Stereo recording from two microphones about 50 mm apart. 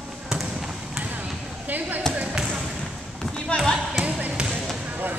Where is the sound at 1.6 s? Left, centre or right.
Right.